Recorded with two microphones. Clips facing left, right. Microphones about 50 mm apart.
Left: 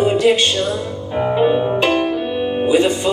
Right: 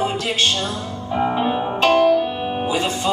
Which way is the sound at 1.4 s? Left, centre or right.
Centre.